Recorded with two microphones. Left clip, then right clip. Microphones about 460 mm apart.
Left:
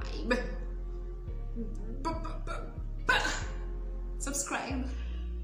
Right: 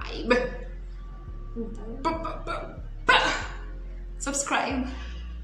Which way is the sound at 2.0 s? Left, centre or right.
Right.